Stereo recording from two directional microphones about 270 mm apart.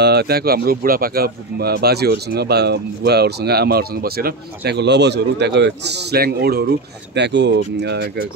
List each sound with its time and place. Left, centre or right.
0.0 s speech: right